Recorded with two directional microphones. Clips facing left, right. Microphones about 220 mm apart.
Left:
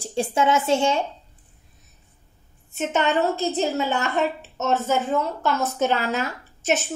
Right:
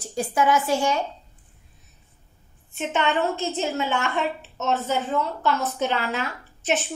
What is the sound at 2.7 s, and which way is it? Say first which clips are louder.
A woman's voice: left 2 dB; 40° left (ahead or behind).